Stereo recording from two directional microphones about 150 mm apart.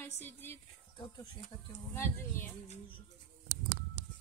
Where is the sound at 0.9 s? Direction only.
30° left (ahead or behind).